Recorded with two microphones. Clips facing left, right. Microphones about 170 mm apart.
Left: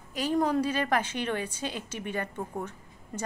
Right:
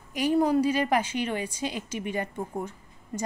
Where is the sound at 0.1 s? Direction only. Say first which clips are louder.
Right 4 dB; 10° right (ahead or behind).